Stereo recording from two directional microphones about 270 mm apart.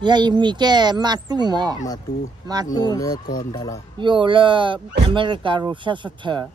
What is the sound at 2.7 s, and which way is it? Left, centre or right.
Speech, centre.